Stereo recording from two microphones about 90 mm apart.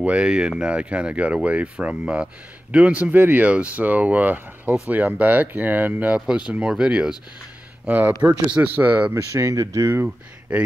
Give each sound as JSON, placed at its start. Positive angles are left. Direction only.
{"t": 0.0, "sound": "speech", "side_deg": -10}
{"t": 9.1, "sound": "speech", "side_deg": -35}